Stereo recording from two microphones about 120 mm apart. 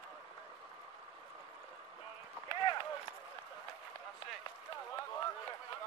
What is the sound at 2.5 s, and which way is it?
Run, 45° left (ahead or behind).